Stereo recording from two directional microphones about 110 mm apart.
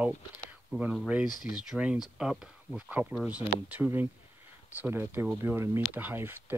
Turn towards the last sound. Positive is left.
turn(degrees=-20)  # may be behind; listen again after turning